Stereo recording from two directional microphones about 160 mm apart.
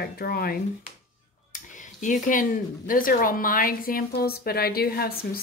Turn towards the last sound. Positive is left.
turn(degrees=70)  # may be behind; listen again after turning